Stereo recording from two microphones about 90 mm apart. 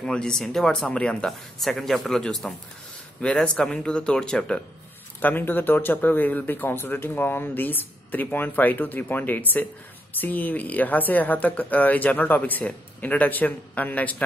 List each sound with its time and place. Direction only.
0.0 s speech: 5° left (ahead or behind)
1.6 s speech: centre (ahead or behind)
5.2 s speech: 20° left (ahead or behind)